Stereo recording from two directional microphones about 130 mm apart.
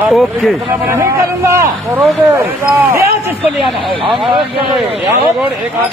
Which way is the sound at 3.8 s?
40° right (ahead or behind).